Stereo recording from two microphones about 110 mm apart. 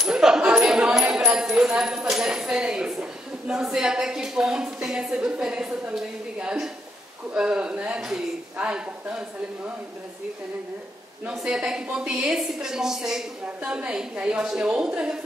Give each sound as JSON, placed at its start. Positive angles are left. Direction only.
{"t": 0.0, "sound": "a sound", "side_deg": -5}
{"t": 7.3, "sound": "a woman's voice", "side_deg": -10}
{"t": 11.2, "sound": "a woman's voice", "side_deg": -5}